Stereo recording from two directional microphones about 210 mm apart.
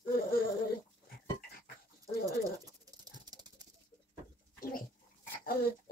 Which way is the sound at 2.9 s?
20° right (ahead or behind).